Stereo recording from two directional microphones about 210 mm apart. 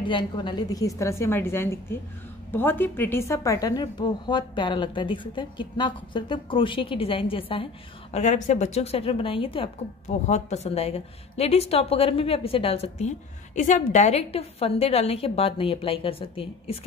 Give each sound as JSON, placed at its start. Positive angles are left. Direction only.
{"t": 0.0, "sound": "a woman's voice", "side_deg": 20}